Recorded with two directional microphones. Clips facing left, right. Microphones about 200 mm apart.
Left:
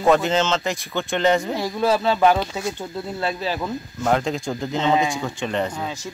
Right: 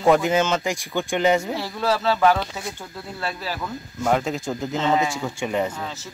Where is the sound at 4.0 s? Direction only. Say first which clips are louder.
Left 1 dB; 5° right (ahead or behind).